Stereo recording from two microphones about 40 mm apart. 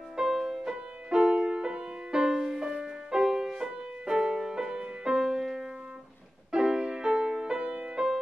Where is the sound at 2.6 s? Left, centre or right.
Centre.